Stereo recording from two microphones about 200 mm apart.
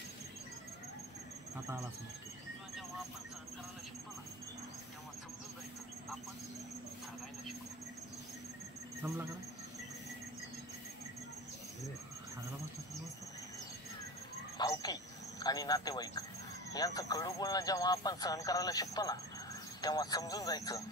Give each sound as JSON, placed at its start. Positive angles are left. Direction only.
{"t": 14.6, "sound": "a man's voice", "side_deg": 20}